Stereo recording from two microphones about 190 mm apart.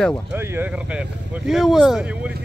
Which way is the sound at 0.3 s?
10° right (ahead or behind).